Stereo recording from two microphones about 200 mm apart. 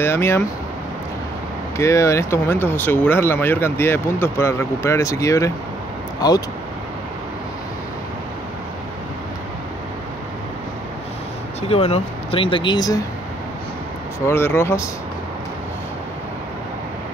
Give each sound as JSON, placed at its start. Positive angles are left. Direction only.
{"t": 0.0, "sound": "speech", "side_deg": 10}
{"t": 1.8, "sound": "speech", "side_deg": 15}
{"t": 11.7, "sound": "speech", "side_deg": 30}
{"t": 14.2, "sound": "speech", "side_deg": 10}